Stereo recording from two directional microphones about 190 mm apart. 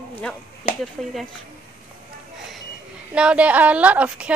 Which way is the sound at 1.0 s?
Centre (ahead or behind).